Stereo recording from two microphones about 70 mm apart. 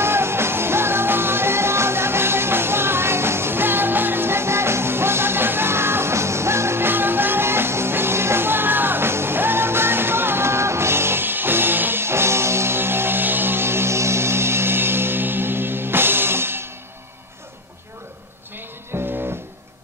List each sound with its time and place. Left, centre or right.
0.0 s music: right
18.9 s music: right